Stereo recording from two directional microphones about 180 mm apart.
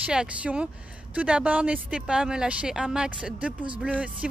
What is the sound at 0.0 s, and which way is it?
Speech, 5° right (ahead or behind).